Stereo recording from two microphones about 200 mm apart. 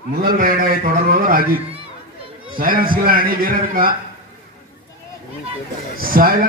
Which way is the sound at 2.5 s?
45° right (ahead or behind).